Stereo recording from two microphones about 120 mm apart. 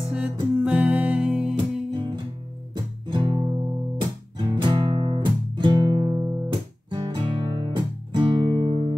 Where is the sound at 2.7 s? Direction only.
40° right (ahead or behind).